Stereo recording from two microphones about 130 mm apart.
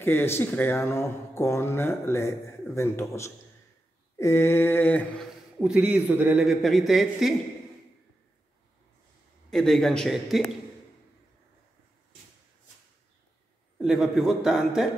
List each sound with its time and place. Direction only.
0.0 s speech: 15° left (ahead or behind)
4.2 s mantra: 20° left (ahead or behind)
5.6 s a man's voice: 5° right (ahead or behind)
9.5 s a man's voice: centre (ahead or behind)
13.7 s a man's voice: centre (ahead or behind)